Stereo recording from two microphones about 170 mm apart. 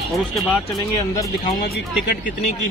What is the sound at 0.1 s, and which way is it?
Speech, centre (ahead or behind).